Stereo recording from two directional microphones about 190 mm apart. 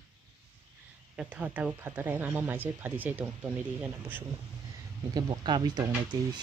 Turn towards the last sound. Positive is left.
turn(degrees=-20)  # may be behind; listen again after turning